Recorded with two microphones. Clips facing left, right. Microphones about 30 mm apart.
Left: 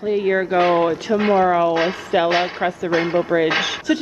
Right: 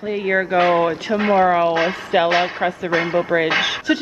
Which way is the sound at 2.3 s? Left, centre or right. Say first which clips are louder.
Right 1 dB; centre.